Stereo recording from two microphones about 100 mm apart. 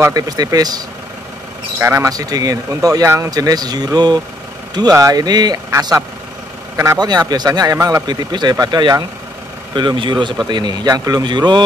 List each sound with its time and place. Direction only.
0.1 s speech: 40° right (ahead or behind)
1.8 s speech: 25° right (ahead or behind)
2.1 s speech: 40° right (ahead or behind)